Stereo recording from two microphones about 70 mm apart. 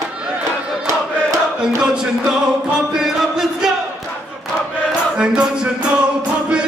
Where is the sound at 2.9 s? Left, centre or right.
Centre.